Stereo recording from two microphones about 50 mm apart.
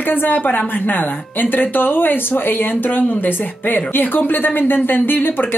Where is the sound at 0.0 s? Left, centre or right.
Left.